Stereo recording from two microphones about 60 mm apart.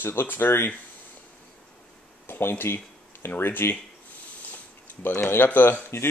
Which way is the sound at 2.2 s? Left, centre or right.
Left.